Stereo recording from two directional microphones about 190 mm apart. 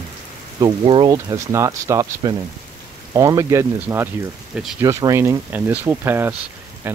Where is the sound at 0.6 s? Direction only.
25° right (ahead or behind).